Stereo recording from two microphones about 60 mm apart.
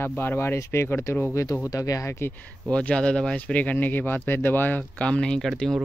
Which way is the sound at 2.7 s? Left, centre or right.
Centre.